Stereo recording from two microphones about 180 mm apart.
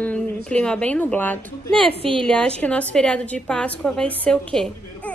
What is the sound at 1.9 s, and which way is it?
Speech, 30° right (ahead or behind).